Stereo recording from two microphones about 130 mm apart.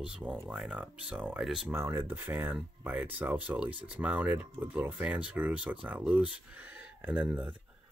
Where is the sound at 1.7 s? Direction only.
20° right (ahead or behind).